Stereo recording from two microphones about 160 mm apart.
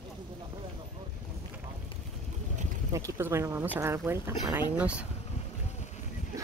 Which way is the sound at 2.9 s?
15° right (ahead or behind).